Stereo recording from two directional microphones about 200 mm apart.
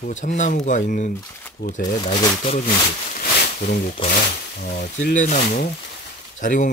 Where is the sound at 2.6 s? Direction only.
45° left (ahead or behind).